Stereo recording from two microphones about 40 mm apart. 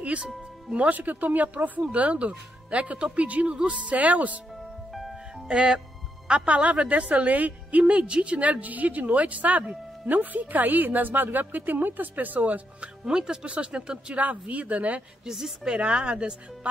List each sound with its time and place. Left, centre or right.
0.7 s speech: right
5.5 s speech: right
7.8 s speech: right
13.0 s speech: centre
14.1 s speech: right
15.3 s speech: centre
15.6 s speech: right